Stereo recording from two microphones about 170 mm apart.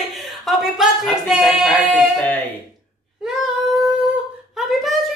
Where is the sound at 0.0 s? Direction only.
Centre (ahead or behind).